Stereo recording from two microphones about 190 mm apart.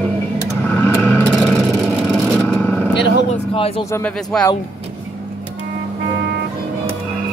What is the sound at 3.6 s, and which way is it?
Speech, 30° left (ahead or behind).